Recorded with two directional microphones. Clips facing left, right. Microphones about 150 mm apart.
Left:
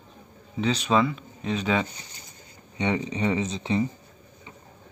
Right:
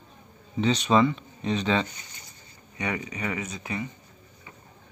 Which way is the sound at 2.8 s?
25° left (ahead or behind).